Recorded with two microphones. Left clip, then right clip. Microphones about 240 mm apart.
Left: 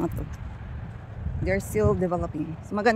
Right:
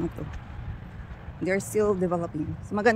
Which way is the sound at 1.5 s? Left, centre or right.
Centre.